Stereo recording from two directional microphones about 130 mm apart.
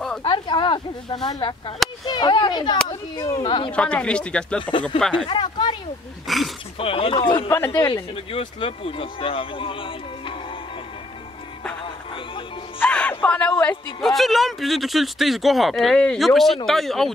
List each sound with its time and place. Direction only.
0.2 s snake: 35° left (ahead or behind)
1.2 s speech: 35° left (ahead or behind)
3.7 s speech: 10° left (ahead or behind)
5.2 s a sound: 40° left (ahead or behind)
6.2 s speech: centre (ahead or behind)
6.8 s speech: 45° left (ahead or behind)
7.4 s speech: 20° left (ahead or behind)
8.3 s speech: 45° left (ahead or behind)
12.7 s music: 10° left (ahead or behind)
13.2 s speech: 10° left (ahead or behind)
14.0 s speech: centre (ahead or behind)